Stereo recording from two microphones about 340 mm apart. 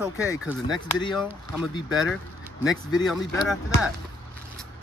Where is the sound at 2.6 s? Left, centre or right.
Centre.